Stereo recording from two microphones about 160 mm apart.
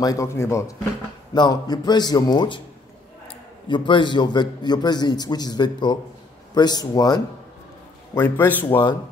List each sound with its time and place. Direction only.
0.0 s a man's voice: 20° left (ahead or behind)
3.6 s a man's voice: 30° left (ahead or behind)
8.1 s a man's voice: 15° left (ahead or behind)
8.6 s a man's voice: 30° left (ahead or behind)